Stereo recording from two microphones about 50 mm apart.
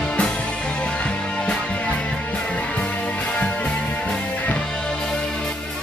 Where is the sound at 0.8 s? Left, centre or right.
Left.